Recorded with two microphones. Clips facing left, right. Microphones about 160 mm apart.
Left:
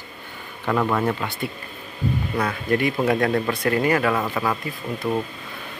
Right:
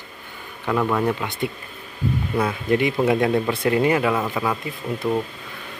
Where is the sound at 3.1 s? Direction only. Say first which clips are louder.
Right 1 dB; 15° right (ahead or behind).